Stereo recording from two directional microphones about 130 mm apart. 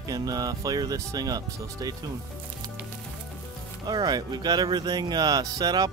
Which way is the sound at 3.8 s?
30° right (ahead or behind).